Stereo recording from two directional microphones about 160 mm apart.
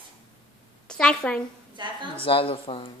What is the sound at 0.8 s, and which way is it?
Speech, 5° left (ahead or behind).